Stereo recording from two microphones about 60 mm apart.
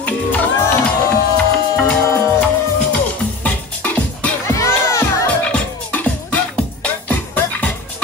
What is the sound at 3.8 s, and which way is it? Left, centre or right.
Music, left.